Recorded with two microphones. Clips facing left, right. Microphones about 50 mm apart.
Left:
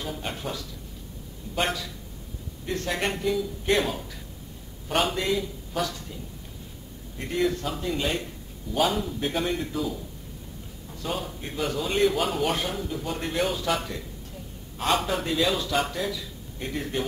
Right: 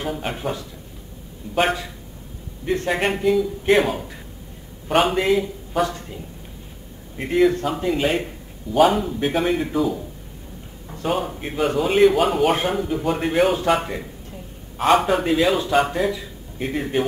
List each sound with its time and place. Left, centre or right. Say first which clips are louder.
0.1 s a man's voice: right 6 dB; right
7.2 s a man's voice: right 8 dB; right
10.9 s a man's voice: right 8 dB; right; by 12.5 s centre
12.5 s speech: right 8 dB; right
15.0 s a man's voice: right 8 dB; centre
15.2 s a man's voice: right 7 dB; right